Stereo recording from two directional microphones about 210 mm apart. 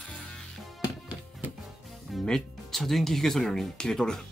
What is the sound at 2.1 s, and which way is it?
Speech, centre (ahead or behind).